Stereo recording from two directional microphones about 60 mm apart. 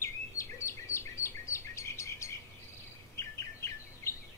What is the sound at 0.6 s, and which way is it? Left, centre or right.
Chirp, left.